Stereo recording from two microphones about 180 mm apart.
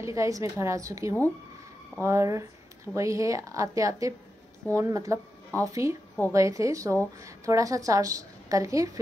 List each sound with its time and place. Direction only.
0.0 s a woman's voice: 15° right (ahead or behind)